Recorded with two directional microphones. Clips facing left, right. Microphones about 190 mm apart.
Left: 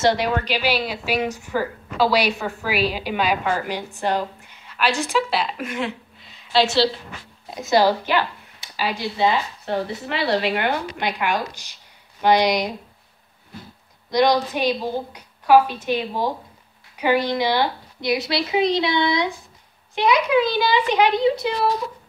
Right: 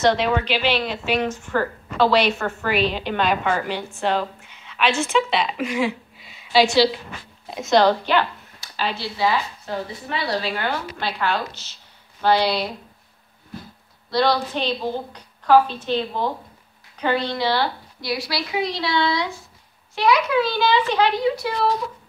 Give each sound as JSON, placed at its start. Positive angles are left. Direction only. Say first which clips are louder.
{"t": 0.1, "sound": "a woman's voice", "louder": "right 1 dB", "side_deg": 0}
{"t": 4.4, "sound": "a sound", "louder": "right 1 dB", "side_deg": 0}
{"t": 4.9, "sound": "a woman's voice", "louder": "right 2 dB", "side_deg": 5}
{"t": 14.1, "sound": "a woman's voice", "louder": "left 2 dB", "side_deg": 15}